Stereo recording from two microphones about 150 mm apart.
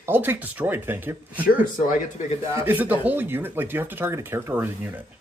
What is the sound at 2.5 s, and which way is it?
Speech, 15° right (ahead or behind).